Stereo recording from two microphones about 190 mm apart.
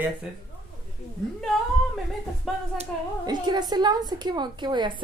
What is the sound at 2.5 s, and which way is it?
Speech, centre (ahead or behind).